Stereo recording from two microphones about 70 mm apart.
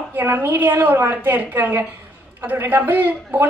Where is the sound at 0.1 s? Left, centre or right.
Right.